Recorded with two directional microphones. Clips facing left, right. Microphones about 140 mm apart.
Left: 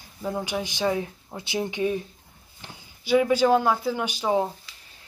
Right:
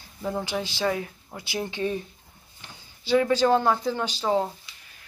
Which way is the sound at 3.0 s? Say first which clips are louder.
Left 1 dB; 10° left (ahead or behind).